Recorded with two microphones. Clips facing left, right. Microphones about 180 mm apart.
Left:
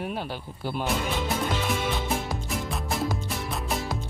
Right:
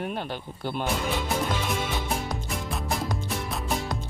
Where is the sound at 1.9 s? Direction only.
Centre (ahead or behind).